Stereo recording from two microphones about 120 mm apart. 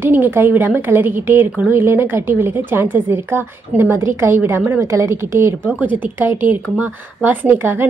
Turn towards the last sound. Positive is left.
turn(degrees=-15)  # may be behind; listen again after turning